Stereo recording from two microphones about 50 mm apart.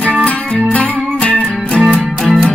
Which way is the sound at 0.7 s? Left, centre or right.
Left.